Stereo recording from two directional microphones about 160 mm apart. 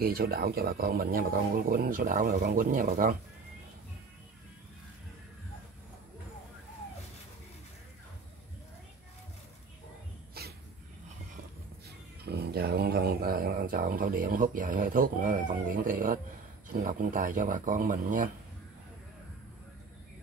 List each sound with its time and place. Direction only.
0.0 s a man's voice: 75° right (ahead or behind); by 3.2 s 60° right (ahead or behind)
10.4 s a sound: 75° right (ahead or behind)
12.2 s speech: 85° right; by 18.3 s 55° right (ahead or behind)